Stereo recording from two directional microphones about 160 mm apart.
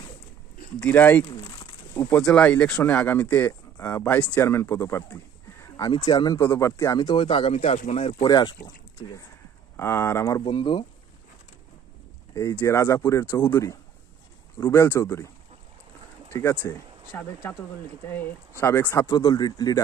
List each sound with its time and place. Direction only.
0.7 s speech: 10° left (ahead or behind); by 8.2 s 45° left (ahead or behind)
8.2 s speech: 25° left (ahead or behind)
9.8 s speech: 15° left (ahead or behind)
10.5 s speech: 30° left (ahead or behind)
12.4 s speech: 20° left (ahead or behind)
16.3 s speech: 20° left (ahead or behind)
19.1 s speech: 25° left (ahead or behind)